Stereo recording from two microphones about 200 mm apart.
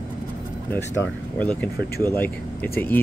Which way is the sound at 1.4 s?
5° left (ahead or behind).